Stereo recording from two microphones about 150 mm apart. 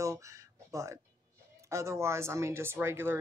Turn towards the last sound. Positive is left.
turn(degrees=-15)  # may be behind; listen again after turning